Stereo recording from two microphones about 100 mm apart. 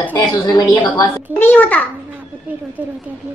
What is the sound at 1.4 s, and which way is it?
Speech, 20° left (ahead or behind).